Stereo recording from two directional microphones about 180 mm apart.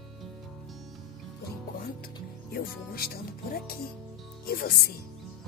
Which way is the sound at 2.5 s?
55° left (ahead or behind).